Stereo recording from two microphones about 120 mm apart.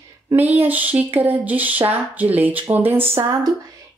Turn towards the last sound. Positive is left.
turn(degrees=-25)  # may be behind; listen again after turning